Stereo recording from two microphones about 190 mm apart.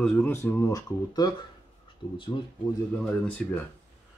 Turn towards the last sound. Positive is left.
turn(degrees=10)  # may be behind; listen again after turning